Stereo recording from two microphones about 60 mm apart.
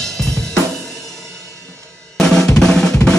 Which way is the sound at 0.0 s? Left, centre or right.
Centre.